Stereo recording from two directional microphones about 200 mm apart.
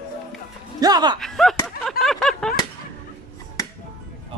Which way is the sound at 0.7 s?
20° right (ahead or behind).